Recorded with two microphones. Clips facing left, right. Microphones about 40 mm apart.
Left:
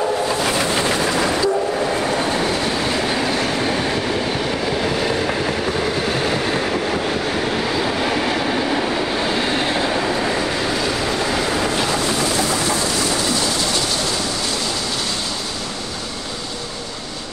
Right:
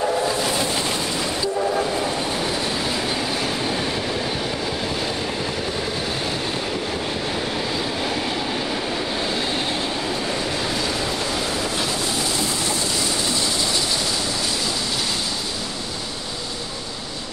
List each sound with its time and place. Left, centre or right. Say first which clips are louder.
0.4 s train: left 4 dB; left
6.1 s train: left 6 dB; left
7.8 s train: left 5 dB; left